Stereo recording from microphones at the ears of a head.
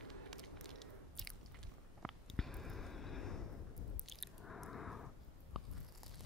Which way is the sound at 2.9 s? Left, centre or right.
Left.